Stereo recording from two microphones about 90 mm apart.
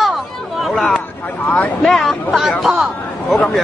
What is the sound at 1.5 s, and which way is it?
Speech, 10° left (ahead or behind).